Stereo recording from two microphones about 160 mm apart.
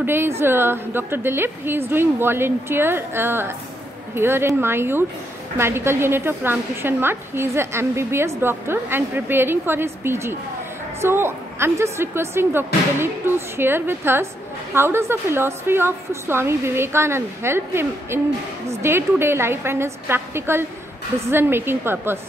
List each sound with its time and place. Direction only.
0.0 s a woman's voice: 15° right (ahead or behind)